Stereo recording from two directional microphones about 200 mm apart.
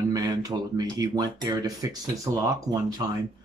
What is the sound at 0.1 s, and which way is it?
Speech, 20° right (ahead or behind).